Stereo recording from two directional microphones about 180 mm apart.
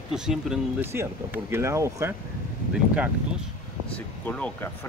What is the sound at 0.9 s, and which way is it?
Speech, 15° right (ahead or behind).